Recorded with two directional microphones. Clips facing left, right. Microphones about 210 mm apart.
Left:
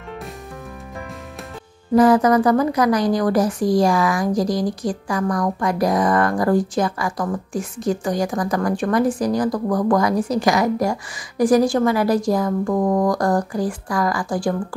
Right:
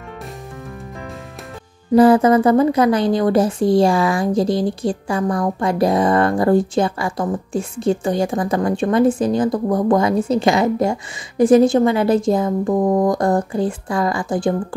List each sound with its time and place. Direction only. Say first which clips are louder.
2.0 s a woman's voice: right 3 dB; 30° right (ahead or behind)